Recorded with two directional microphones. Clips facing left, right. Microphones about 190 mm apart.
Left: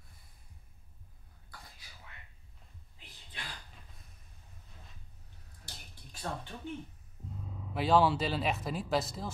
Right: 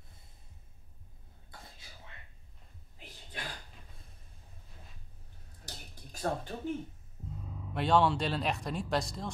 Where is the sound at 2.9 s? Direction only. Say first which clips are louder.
Right 5 dB; 45° right (ahead or behind).